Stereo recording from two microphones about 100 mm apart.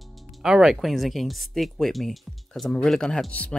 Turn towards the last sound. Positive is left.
turn(degrees=15)  # may be behind; listen again after turning